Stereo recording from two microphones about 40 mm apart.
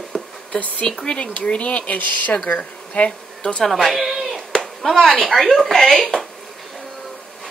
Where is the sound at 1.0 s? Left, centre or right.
Left.